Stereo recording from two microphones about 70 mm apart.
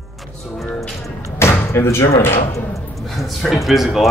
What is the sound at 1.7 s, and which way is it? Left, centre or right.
Speech, left.